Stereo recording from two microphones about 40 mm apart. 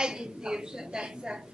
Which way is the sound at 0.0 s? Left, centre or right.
Centre.